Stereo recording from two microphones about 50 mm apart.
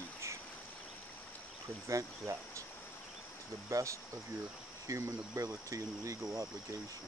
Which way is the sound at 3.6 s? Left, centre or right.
Right.